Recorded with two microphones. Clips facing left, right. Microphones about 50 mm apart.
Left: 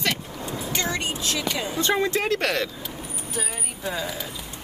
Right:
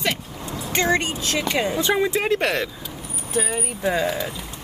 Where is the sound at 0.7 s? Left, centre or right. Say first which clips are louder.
Right 8 dB; right.